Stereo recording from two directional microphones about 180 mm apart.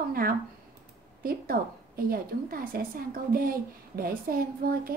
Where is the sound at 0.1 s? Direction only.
55° right (ahead or behind).